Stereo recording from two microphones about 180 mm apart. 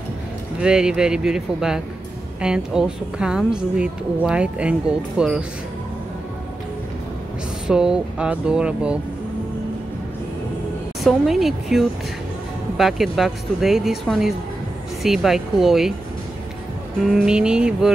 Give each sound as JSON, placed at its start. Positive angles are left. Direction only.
{"t": 0.6, "sound": "speech", "side_deg": -5}
{"t": 7.6, "sound": "speech", "side_deg": -5}
{"t": 11.1, "sound": "speech", "side_deg": 0}
{"t": 17.0, "sound": "speech", "side_deg": 0}